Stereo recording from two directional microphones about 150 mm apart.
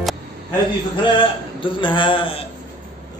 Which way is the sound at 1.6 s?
35° left (ahead or behind).